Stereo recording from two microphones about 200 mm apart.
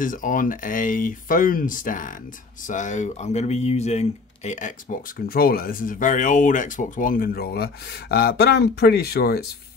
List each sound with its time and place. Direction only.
0.0 s speech: 40° left (ahead or behind)